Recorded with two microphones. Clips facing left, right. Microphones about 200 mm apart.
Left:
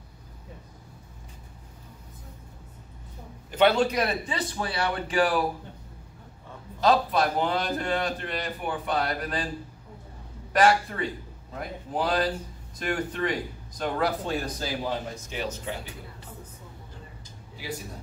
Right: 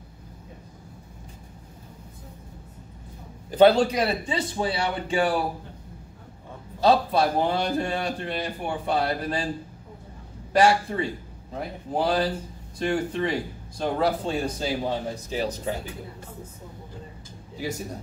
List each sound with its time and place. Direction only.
3.5 s a man's voice: 35° right (ahead or behind)
6.8 s a man's voice: 30° right (ahead or behind)
10.5 s a man's voice: 30° right (ahead or behind)
15.2 s speech: 35° right (ahead or behind)